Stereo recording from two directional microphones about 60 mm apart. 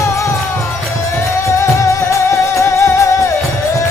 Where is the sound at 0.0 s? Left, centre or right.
Left.